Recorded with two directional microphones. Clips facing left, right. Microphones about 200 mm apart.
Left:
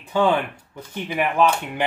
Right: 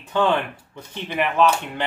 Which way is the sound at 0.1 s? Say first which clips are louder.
Left 1 dB; 10° left (ahead or behind).